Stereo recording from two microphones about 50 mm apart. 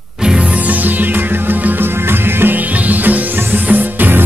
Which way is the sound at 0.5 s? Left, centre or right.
Right.